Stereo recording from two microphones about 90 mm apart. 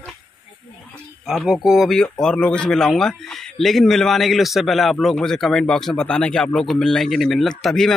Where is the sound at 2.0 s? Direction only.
10° left (ahead or behind).